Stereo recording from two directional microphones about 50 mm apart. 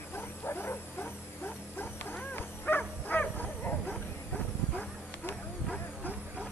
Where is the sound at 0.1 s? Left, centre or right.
Left.